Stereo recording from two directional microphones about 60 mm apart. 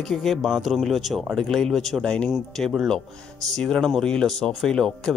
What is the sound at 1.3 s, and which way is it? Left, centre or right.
Speech, centre.